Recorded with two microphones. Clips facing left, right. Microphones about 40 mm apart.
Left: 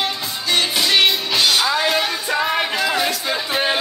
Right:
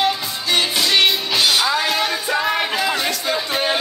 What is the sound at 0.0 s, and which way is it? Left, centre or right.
Music, centre.